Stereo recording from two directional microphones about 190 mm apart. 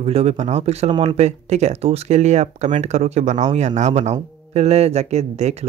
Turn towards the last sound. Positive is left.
turn(degrees=-35)  # may be behind; listen again after turning